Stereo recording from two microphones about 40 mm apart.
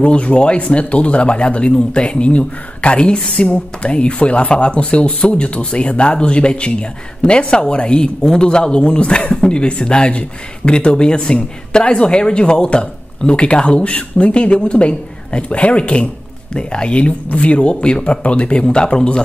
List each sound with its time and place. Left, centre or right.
0.0 s speech: left